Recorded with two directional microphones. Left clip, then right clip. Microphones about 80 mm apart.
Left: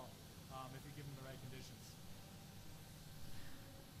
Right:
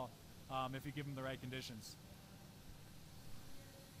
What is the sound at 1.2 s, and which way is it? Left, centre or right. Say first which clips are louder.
Speech: right 11 dB; right.